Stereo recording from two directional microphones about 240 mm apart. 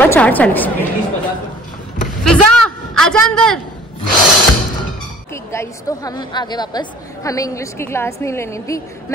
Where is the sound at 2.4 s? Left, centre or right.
Right.